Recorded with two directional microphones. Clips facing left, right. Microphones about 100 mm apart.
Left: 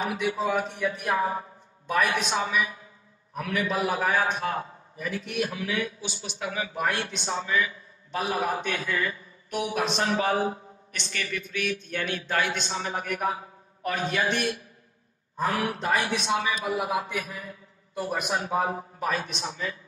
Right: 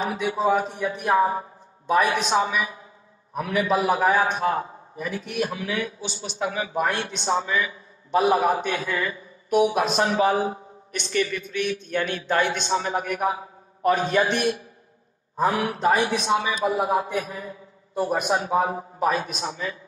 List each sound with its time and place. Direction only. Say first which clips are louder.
0.0 s a man's voice: right 4 dB; 30° right (ahead or behind)